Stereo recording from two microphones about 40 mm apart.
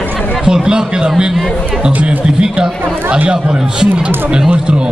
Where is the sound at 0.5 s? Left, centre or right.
Centre.